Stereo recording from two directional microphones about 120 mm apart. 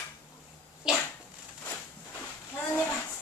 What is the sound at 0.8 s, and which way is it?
Dog, 5° right (ahead or behind).